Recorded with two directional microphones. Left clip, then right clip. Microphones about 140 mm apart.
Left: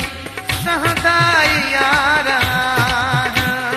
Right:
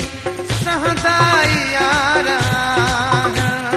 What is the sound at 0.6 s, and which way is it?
Music, 30° left (ahead or behind).